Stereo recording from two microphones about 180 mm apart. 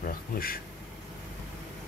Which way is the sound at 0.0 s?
55° left (ahead or behind).